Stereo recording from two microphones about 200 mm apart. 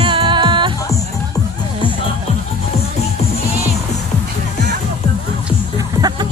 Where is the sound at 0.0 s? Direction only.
25° right (ahead or behind).